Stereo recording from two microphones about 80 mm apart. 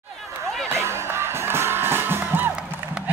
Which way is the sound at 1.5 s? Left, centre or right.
Right.